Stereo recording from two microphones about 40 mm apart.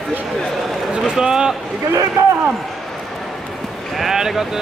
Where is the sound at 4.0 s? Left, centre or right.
Centre.